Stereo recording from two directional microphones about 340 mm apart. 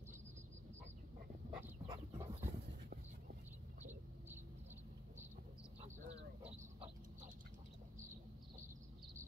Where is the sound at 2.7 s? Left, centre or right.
Right.